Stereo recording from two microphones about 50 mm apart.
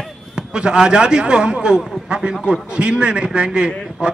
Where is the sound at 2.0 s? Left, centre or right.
Centre.